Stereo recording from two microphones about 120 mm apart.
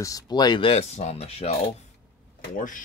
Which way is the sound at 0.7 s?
65° left (ahead or behind).